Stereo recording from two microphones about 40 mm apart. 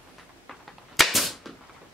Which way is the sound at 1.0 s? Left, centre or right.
Centre.